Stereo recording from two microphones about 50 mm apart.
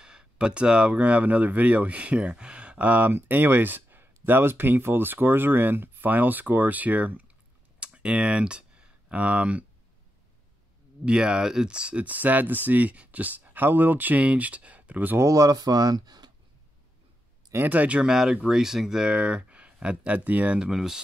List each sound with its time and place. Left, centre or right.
0.0 s speech: centre
7.8 s a sound: right
11.1 s speech: centre; by 15.1 s right
15.1 s speech: right
17.6 s speech: right
18.0 s speech: centre
20.2 s speech: right
20.7 s speech: centre